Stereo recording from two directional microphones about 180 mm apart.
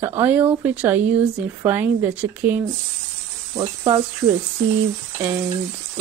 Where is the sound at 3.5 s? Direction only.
20° right (ahead or behind).